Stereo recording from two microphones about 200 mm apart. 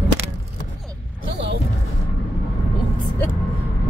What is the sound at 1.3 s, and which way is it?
Music, 60° right (ahead or behind).